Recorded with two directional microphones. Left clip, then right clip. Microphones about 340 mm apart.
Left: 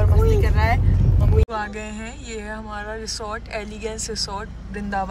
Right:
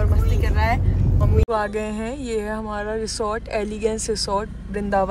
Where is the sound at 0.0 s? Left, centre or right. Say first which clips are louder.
Left 6 dB; centre.